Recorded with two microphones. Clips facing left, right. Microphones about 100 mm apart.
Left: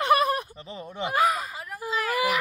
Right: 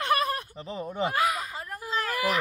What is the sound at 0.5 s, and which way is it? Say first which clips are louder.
Speech: right 4 dB; centre (ahead or behind).